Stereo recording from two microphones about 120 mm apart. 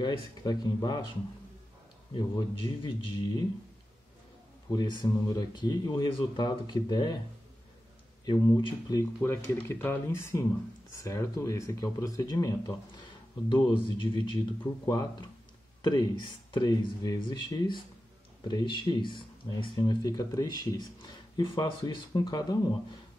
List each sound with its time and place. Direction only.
0.0 s speech: 35° left (ahead or behind)
2.1 s a man's voice: 45° left (ahead or behind)
4.6 s speech: 35° left (ahead or behind)
8.3 s speech: 40° left (ahead or behind)
9.2 s speech: 20° left (ahead or behind)
13.5 s a man's voice: 45° left (ahead or behind)
14.6 s speech: 30° left (ahead or behind)
20.1 s speech: 30° left (ahead or behind)